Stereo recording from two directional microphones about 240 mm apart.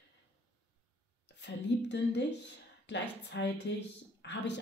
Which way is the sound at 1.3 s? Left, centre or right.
Left.